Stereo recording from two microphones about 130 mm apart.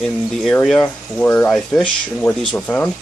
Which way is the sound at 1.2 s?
20° left (ahead or behind).